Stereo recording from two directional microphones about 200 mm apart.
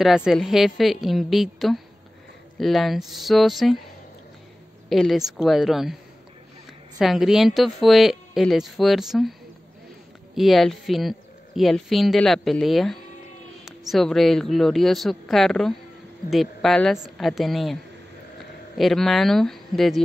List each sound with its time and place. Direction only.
0.0 s speech: centre (ahead or behind)
4.8 s speech: centre (ahead or behind)
7.0 s speech: centre (ahead or behind)
10.3 s speech: centre (ahead or behind)
18.8 s speech: centre (ahead or behind)